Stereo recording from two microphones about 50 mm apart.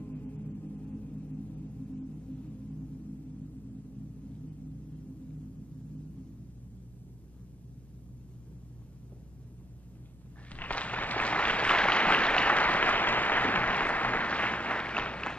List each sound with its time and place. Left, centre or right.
0.0 s music: left
10.5 s applause: left